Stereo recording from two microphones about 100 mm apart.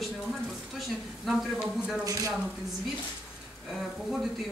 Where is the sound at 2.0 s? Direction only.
35° right (ahead or behind).